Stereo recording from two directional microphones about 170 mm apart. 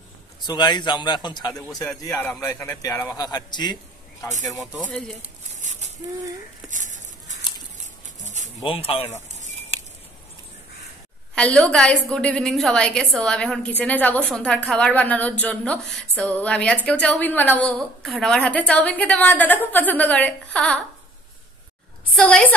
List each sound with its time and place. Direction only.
0.4 s a man's voice: 25° left (ahead or behind)
4.7 s speech: 5° left (ahead or behind)
5.6 s a sound: 45° right (ahead or behind)
8.6 s speech: 35° left (ahead or behind)
9.3 s a sound: 45° right (ahead or behind)
11.3 s a woman's voice: 5° left (ahead or behind)
22.1 s a woman's voice: 10° left (ahead or behind)